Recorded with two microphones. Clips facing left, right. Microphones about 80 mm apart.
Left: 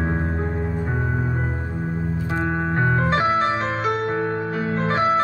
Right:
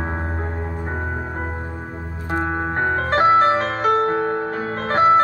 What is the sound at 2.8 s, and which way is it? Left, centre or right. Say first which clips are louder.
Music: right 3 dB; right.